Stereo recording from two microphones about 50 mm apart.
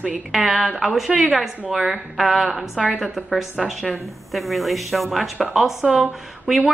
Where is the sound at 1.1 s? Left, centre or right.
Right.